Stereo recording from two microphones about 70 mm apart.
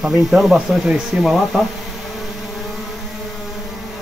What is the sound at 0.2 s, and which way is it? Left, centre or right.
Speech, centre.